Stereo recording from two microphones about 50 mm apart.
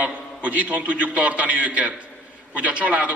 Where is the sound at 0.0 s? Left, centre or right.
Right.